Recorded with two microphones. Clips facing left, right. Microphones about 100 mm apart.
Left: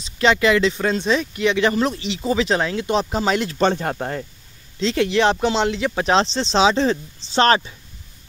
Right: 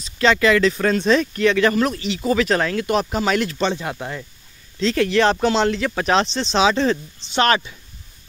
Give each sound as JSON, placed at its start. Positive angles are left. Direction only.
{"t": 0.0, "sound": "speech", "side_deg": 20}
{"t": 3.5, "sound": "speech", "side_deg": 45}
{"t": 4.7, "sound": "speech", "side_deg": 25}